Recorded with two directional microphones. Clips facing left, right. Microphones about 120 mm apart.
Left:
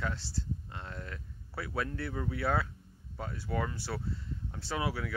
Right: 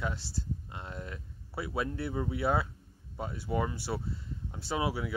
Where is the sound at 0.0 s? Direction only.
15° right (ahead or behind).